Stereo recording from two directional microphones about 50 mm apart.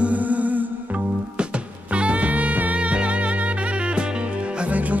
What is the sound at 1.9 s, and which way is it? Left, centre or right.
Music, right.